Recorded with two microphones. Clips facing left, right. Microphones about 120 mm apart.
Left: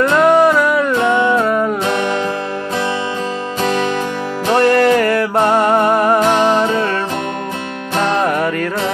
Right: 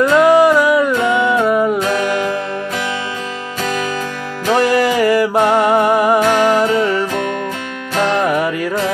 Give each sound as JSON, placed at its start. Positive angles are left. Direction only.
{"t": 0.1, "sound": "music", "side_deg": -5}
{"t": 1.9, "sound": "music", "side_deg": 25}
{"t": 4.5, "sound": "music", "side_deg": -5}
{"t": 6.2, "sound": "music", "side_deg": 20}
{"t": 6.6, "sound": "music", "side_deg": -10}